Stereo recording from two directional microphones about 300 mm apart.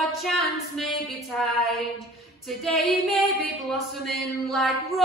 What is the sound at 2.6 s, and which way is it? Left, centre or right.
Singing, centre.